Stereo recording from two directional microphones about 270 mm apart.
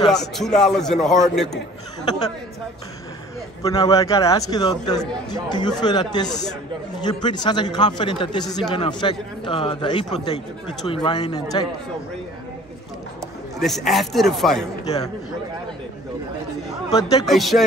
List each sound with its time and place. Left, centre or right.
0.1 s a man's voice: centre
2.0 s speech: centre
3.6 s speech: centre
13.6 s a man's voice: centre
16.9 s speech: centre
17.3 s a man's voice: centre